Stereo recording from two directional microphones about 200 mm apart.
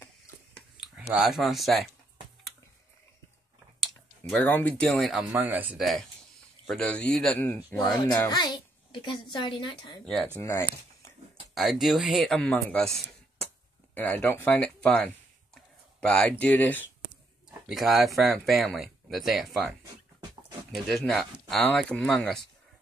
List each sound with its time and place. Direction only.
0.8 s speech: centre (ahead or behind)
4.3 s speech: 10° left (ahead or behind)
5.3 s speech: 10° right (ahead or behind)
7.7 s a child's voice: 20° left (ahead or behind)
10.4 s speech: 15° left (ahead or behind)
11.5 s a man's voice: centre (ahead or behind)
15.5 s a sound: 5° left (ahead or behind)
17.6 s speech: centre (ahead or behind)
20.7 s speech: centre (ahead or behind)